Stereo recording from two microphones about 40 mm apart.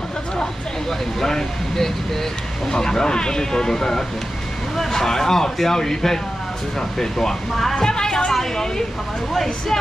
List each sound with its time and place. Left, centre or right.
0.8 s a woman's voice: centre